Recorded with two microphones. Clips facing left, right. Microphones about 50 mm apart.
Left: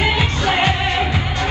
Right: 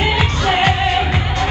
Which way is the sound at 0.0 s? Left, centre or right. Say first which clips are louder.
Right 1 dB; right.